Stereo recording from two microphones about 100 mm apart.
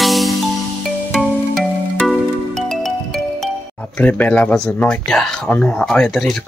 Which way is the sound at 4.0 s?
15° left (ahead or behind).